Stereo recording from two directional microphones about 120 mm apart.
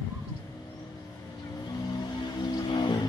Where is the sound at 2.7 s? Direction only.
35° left (ahead or behind).